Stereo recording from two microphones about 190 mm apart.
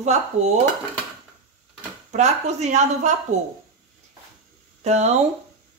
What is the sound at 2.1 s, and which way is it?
Speech, 35° right (ahead or behind).